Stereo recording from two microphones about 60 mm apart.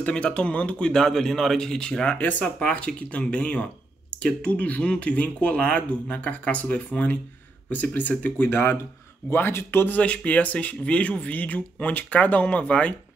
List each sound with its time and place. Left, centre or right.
0.0 s a man's voice: centre
2.1 s speech: left
9.9 s speech: left